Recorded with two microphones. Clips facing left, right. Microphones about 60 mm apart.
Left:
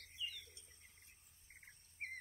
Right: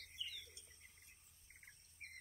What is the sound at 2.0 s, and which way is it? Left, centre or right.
Bird, left.